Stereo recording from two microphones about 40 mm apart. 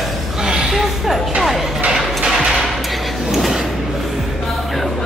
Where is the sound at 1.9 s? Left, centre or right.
Centre.